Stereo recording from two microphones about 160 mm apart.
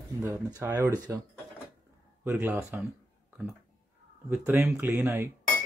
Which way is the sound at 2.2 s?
15° right (ahead or behind).